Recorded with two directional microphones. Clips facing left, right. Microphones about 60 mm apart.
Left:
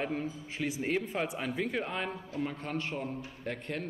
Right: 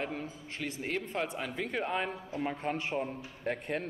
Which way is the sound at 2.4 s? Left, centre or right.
Right.